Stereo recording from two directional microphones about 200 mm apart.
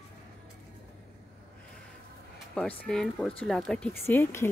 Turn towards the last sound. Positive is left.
turn(degrees=10)  # may be behind; listen again after turning